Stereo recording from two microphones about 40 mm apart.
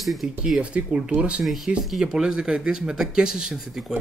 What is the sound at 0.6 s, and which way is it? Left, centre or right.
Speech, right.